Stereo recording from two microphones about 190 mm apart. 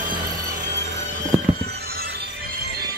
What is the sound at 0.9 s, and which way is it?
Music, 65° right (ahead or behind).